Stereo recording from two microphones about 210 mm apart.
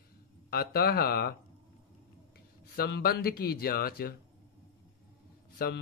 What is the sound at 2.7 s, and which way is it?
Speech, 50° left (ahead or behind).